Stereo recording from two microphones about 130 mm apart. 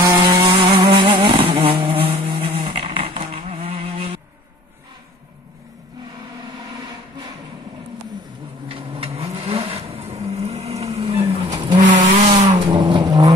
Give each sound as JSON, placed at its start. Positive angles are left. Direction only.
{"t": 0.4, "sound": "vehicle", "side_deg": -40}
{"t": 8.6, "sound": "vehicle", "side_deg": -45}
{"t": 11.7, "sound": "vehicle", "side_deg": -75}
{"t": 12.6, "sound": "vehicle", "side_deg": -35}